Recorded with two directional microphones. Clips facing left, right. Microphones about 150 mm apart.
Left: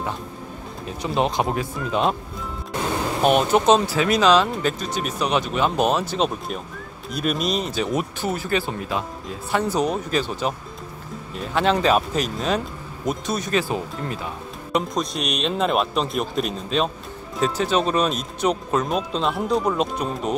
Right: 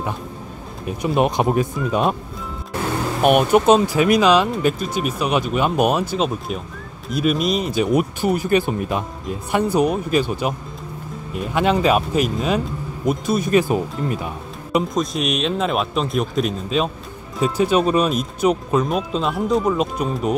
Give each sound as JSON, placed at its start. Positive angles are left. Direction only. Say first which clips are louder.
{"t": 1.0, "sound": "speech", "louder": "right 4 dB", "side_deg": -15}
{"t": 3.2, "sound": "speech", "louder": "right 3 dB", "side_deg": -10}
{"t": 13.5, "sound": "speech", "louder": "right 6 dB", "side_deg": -15}
{"t": 14.7, "sound": "speech", "louder": "right 3 dB", "side_deg": 0}